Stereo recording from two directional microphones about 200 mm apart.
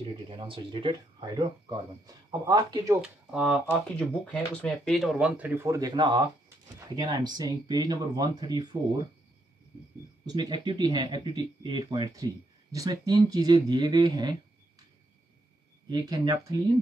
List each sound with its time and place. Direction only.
0.0 s speech: 25° right (ahead or behind)
10.2 s speech: 20° right (ahead or behind)
15.9 s speech: 20° right (ahead or behind)